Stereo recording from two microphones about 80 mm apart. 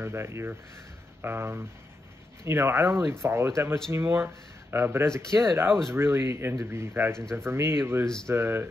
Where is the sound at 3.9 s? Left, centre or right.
Right.